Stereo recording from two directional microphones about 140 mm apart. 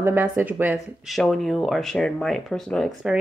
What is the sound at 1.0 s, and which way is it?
Speech, centre (ahead or behind).